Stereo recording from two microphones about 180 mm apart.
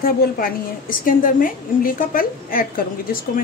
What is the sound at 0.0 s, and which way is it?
A woman's voice, 50° left (ahead or behind).